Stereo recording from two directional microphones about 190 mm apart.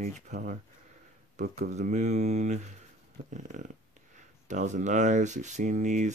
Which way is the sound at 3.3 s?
40° right (ahead or behind).